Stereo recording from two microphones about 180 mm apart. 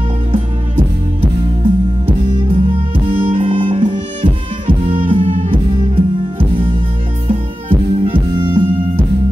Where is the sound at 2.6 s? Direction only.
30° right (ahead or behind).